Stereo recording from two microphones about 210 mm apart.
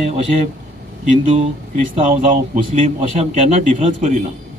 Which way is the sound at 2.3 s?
35° right (ahead or behind).